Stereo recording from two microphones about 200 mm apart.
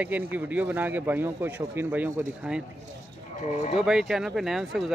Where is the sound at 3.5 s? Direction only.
35° left (ahead or behind).